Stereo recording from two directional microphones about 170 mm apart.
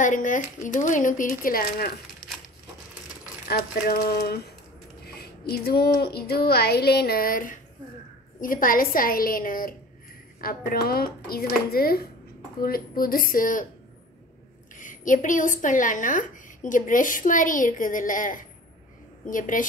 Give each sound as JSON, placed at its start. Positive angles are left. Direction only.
{"t": 0.0, "sound": "a woman's voice", "side_deg": 50}
{"t": 3.4, "sound": "a woman's voice", "side_deg": 65}
{"t": 14.8, "sound": "a woman's voice", "side_deg": 50}